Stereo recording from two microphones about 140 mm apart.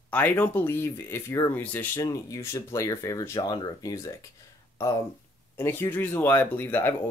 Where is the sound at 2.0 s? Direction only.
25° left (ahead or behind).